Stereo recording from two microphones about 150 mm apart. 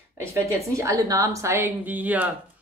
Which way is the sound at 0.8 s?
20° right (ahead or behind).